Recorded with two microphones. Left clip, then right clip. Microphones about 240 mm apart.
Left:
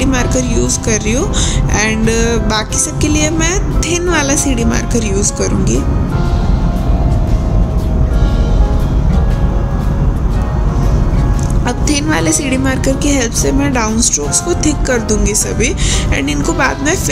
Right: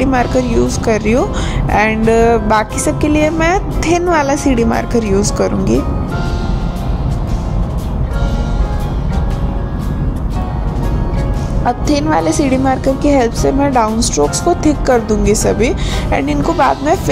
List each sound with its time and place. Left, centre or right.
0.3 s speech: right
11.6 s a woman's voice: centre